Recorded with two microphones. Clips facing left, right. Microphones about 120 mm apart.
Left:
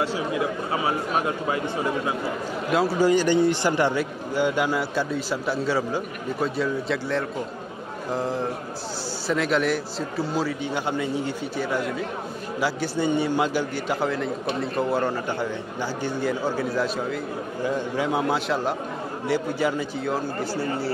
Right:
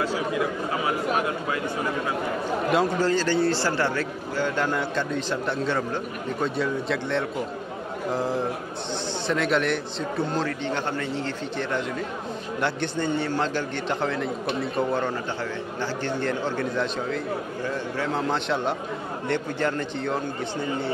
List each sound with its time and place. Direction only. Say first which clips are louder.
0.0 s a sound: even; 25° left (ahead or behind)
2.7 s speech: left 1 dB; centre (ahead or behind)
3.0 s a man's voice: left 3 dB; 15° left (ahead or behind)